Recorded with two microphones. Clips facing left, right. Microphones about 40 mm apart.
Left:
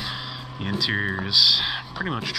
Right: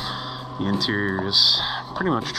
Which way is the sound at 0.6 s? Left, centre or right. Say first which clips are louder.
Right 2 dB; left.